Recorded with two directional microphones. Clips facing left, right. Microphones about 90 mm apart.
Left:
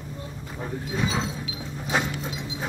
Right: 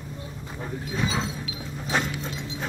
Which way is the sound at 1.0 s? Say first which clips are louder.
Even; centre (ahead or behind).